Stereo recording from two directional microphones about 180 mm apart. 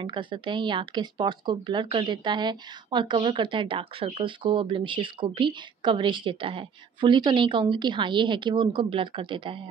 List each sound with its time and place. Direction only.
0.0 s speech: 25° right (ahead or behind)